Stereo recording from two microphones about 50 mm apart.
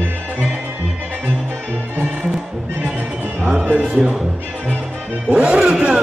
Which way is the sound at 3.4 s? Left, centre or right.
Centre.